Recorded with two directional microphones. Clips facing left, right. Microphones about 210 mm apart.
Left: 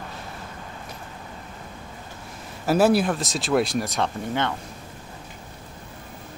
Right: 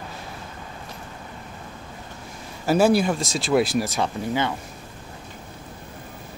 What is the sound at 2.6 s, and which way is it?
Speech, centre (ahead or behind).